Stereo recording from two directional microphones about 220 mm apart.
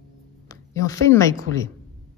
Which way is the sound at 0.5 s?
15° left (ahead or behind).